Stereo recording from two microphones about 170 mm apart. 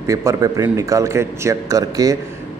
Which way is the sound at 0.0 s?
20° right (ahead or behind).